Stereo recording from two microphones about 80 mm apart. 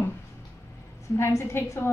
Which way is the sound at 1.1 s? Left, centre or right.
Left.